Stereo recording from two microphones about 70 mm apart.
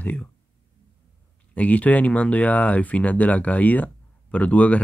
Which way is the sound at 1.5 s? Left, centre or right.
Left.